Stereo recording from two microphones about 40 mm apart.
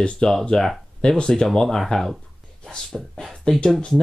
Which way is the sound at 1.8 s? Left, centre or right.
Centre.